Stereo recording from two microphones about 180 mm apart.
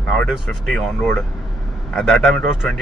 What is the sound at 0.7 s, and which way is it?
Speech, centre (ahead or behind).